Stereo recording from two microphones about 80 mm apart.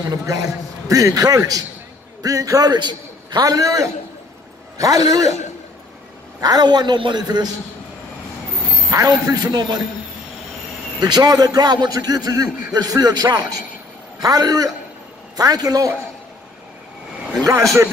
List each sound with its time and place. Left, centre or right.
0.1 s a man's voice: right
6.4 s a man's voice: right
8.9 s a man's voice: right
11.0 s a man's voice: right
17.4 s a man's voice: right